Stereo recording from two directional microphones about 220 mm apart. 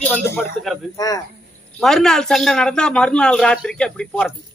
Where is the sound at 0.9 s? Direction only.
15° left (ahead or behind).